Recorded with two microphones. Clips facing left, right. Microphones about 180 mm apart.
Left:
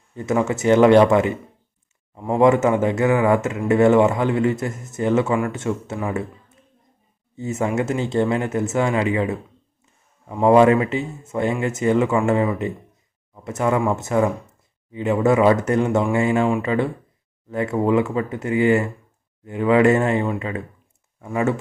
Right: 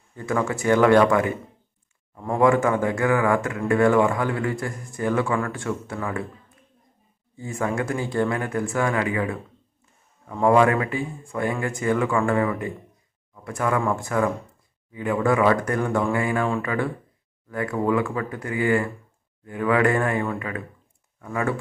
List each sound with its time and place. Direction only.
0.1 s a man's voice: 20° left (ahead or behind)
7.3 s a man's voice: 20° left (ahead or behind)